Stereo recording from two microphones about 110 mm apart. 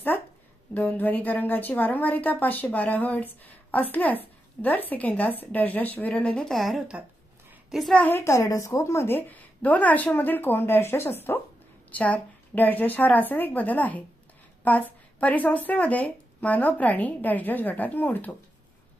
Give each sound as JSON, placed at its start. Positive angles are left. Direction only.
{"t": 0.7, "sound": "a woman's voice", "side_deg": 15}
{"t": 8.0, "sound": "a woman's voice", "side_deg": 20}